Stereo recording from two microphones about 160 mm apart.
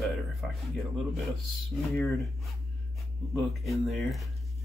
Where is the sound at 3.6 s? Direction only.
Centre (ahead or behind).